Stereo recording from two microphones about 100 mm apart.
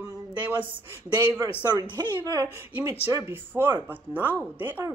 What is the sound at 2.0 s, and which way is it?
Speech, 30° left (ahead or behind).